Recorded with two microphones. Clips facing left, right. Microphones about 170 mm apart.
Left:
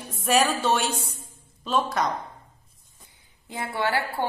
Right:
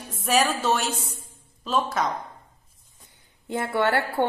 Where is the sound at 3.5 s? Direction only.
65° right (ahead or behind).